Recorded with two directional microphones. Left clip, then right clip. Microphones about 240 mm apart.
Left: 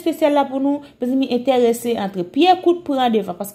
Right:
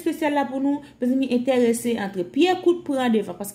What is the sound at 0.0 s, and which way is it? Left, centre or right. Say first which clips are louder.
A woman's voice: left 6 dB; centre.